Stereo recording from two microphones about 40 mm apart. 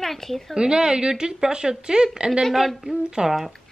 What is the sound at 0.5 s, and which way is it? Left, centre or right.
A woman's voice, right.